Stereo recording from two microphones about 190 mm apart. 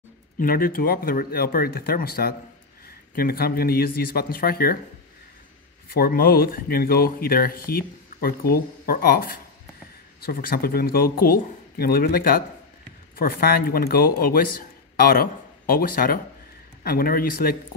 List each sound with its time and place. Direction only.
0.4 s speech: 50° left (ahead or behind)
5.9 s speech: 50° left (ahead or behind)